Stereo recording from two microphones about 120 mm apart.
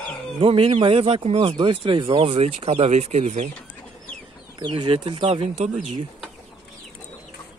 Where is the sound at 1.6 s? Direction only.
45° right (ahead or behind).